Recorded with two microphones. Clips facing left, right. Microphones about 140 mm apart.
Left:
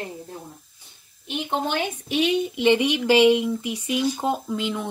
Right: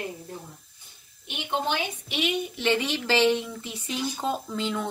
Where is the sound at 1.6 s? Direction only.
50° left (ahead or behind).